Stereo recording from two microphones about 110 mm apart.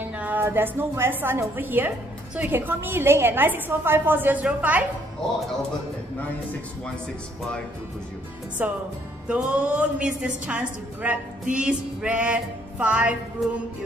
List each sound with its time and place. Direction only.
0.0 s a woman's voice: 15° right (ahead or behind)
8.6 s a woman's voice: 15° right (ahead or behind)